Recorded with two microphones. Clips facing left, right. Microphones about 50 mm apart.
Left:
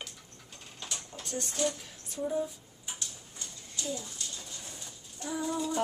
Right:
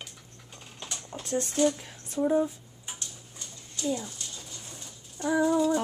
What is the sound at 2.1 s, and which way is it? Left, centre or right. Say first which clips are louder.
Speech: right 7 dB; right.